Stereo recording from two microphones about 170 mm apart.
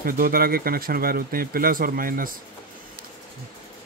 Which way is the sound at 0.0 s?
60° right (ahead or behind).